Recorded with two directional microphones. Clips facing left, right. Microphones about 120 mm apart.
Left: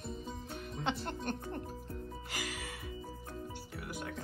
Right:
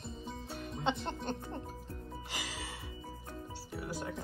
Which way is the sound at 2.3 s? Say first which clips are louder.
Left 1 dB; 25° right (ahead or behind).